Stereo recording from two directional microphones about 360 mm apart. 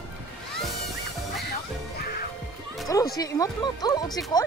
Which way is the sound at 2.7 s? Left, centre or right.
Centre.